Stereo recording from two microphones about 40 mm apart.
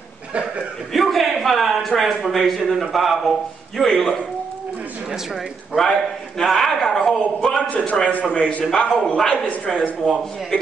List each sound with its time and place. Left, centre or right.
0.9 s a sound: centre
1.8 s a man's voice: centre
5.8 s a man's voice: centre
7.7 s a man's voice: left
8.3 s a man's voice: left; by 9.8 s centre